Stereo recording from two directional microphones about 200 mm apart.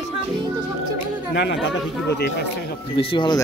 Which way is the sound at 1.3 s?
60° left (ahead or behind).